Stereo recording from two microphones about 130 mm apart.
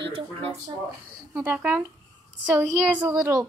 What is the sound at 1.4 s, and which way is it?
Speech, 15° right (ahead or behind).